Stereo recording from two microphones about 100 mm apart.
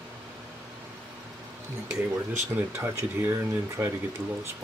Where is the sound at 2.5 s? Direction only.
20° right (ahead or behind).